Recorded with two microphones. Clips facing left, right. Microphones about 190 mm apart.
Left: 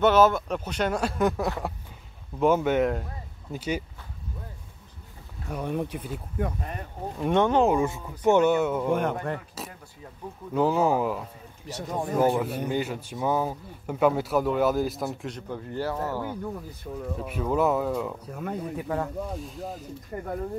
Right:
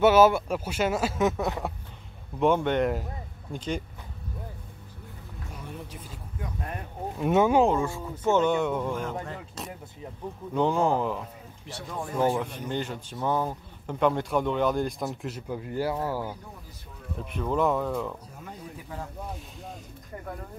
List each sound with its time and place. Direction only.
0.0 s speech: 10° right (ahead or behind); by 3.8 s 10° left (ahead or behind)
5.5 s speech: 60° left (ahead or behind)
6.6 s speech: centre (ahead or behind)
7.7 s speech: 20° left (ahead or behind)
8.5 s speech: 5° left (ahead or behind)
8.9 s speech: 60° left (ahead or behind)
10.5 s speech: 5° left (ahead or behind)
11.6 s speech: 40° left (ahead or behind)
12.2 s speech: 5° left (ahead or behind)
16.9 s speech: 70° left (ahead or behind)
17.3 s speech: 5° left (ahead or behind)
18.3 s speech: 60° left (ahead or behind)
19.3 s speech: centre (ahead or behind)